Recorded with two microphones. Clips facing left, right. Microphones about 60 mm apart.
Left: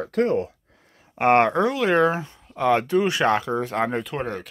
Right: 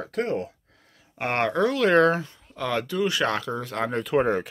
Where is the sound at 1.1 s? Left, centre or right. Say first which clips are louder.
Left 6 dB; left; by 2.2 s centre.